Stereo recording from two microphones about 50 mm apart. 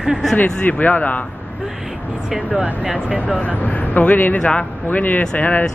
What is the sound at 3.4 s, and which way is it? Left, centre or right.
Speech, left.